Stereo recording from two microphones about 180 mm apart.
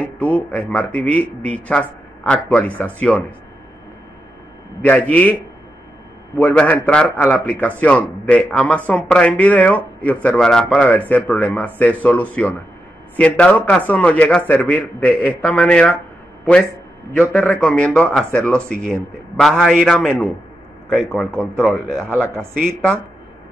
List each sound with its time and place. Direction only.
0.0 s a man's voice: 10° left (ahead or behind)
4.8 s a man's voice: 10° left (ahead or behind)
6.3 s a man's voice: 10° left (ahead or behind)
17.2 s speech: centre (ahead or behind)